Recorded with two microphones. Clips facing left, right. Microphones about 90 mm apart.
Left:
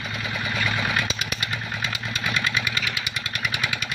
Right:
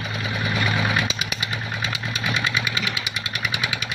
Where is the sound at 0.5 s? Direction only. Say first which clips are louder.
Right 2 dB; 10° right (ahead or behind).